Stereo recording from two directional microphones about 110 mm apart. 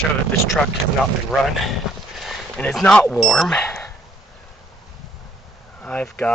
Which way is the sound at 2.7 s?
10° left (ahead or behind).